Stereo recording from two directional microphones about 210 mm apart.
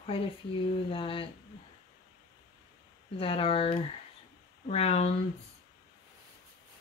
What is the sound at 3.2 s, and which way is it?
Speech, 25° left (ahead or behind).